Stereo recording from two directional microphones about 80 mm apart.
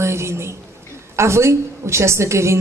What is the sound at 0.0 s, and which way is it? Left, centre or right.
A woman's voice, right.